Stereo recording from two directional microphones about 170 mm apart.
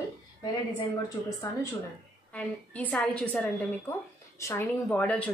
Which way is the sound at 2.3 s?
10° left (ahead or behind).